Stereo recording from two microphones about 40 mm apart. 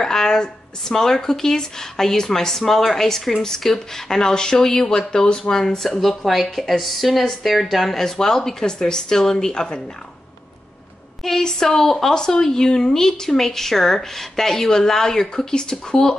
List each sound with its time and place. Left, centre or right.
0.0 s a woman's voice: centre
11.2 s a woman's voice: centre